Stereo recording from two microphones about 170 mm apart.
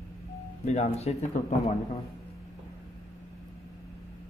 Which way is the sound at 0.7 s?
40° left (ahead or behind).